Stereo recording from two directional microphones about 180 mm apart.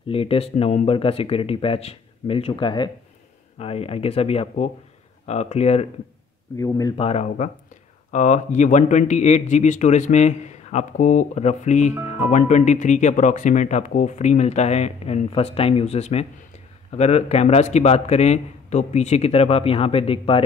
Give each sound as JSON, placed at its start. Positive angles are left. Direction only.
{"t": 0.1, "sound": "speech", "side_deg": 30}
{"t": 7.0, "sound": "speech", "side_deg": 35}